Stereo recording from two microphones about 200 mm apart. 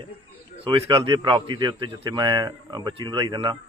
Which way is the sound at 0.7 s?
25° right (ahead or behind).